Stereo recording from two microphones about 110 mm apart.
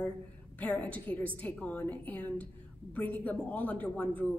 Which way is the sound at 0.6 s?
15° left (ahead or behind).